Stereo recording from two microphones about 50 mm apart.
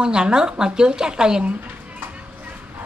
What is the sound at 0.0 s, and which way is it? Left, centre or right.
A woman's voice, centre.